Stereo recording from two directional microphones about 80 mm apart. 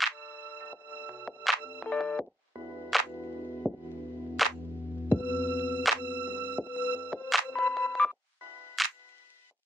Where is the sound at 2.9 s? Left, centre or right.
Centre.